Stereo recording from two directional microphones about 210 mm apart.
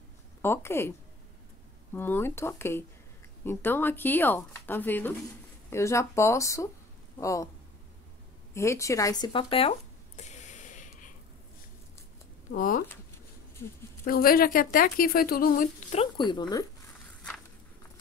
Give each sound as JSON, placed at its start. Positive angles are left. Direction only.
{"t": 0.4, "sound": "speech", "side_deg": 10}
{"t": 2.0, "sound": "speech", "side_deg": 10}
{"t": 8.5, "sound": "a sound", "side_deg": 15}
{"t": 12.4, "sound": "speech", "side_deg": 40}
{"t": 14.0, "sound": "speech", "side_deg": 45}